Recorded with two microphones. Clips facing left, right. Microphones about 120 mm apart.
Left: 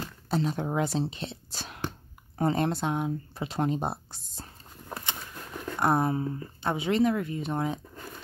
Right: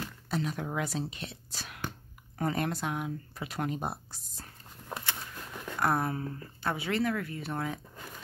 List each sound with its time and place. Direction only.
0.0 s speech: 30° left (ahead or behind)